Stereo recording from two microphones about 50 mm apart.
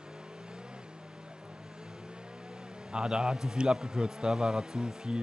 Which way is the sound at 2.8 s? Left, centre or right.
Centre.